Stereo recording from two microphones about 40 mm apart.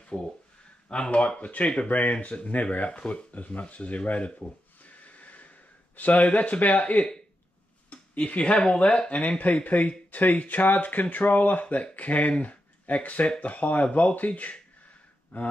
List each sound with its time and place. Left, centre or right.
0.0 s a sound: left
0.8 s speech: left
1.4 s speech: left
4.8 s wheeze: left
5.9 s speech: left
9.4 s speech: left
11.6 s speech: left